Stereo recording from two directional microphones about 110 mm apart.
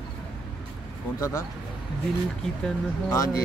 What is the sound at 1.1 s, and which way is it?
Speech, 25° left (ahead or behind).